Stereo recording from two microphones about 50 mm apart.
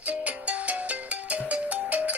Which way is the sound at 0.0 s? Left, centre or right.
Right.